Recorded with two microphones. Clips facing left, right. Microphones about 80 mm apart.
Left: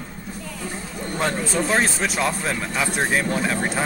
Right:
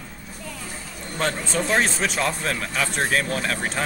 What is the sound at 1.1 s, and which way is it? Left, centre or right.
Speech, centre.